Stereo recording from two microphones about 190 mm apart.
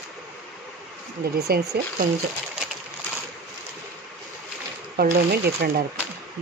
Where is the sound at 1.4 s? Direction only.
60° right (ahead or behind).